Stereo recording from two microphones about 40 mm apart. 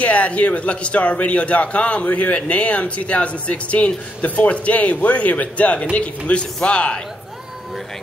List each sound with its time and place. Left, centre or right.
0.0 s a man's voice: left